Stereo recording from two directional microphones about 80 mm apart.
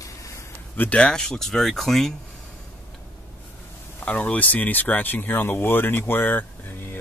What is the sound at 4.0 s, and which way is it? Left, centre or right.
Speech, centre.